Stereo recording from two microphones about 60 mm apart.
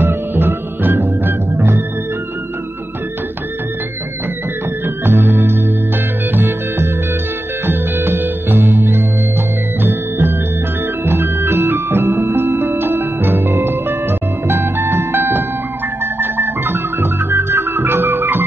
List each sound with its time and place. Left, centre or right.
0.0 s music: right
4.8 s music: right
9.8 s organ: right
11.1 s music: right